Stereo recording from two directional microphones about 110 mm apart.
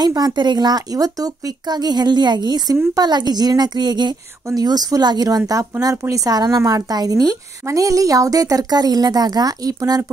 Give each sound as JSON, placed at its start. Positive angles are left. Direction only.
{"t": 0.0, "sound": "speech", "side_deg": -40}